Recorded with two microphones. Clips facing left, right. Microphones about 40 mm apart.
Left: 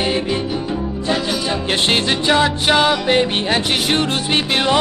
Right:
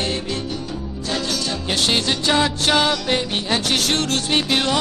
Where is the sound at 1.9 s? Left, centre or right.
Left.